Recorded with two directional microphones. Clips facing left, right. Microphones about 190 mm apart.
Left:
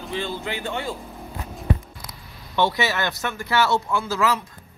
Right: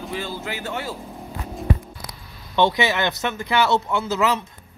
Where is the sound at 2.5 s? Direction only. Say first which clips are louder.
Right 3 dB; 15° right (ahead or behind).